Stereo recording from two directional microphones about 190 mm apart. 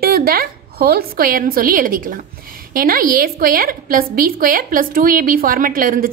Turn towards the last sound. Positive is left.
turn(degrees=-50)  # may be behind; listen again after turning